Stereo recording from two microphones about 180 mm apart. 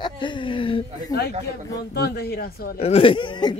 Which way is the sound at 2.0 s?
60° left (ahead or behind).